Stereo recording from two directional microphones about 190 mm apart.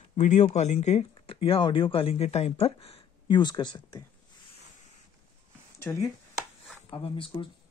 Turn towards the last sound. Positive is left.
turn(degrees=30)  # may be behind; listen again after turning